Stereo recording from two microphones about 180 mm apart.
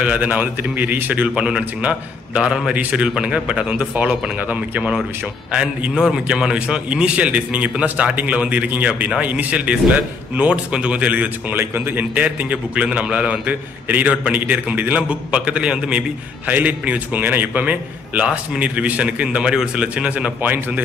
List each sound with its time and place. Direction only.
0.0 s a man's voice: 5° right (ahead or behind)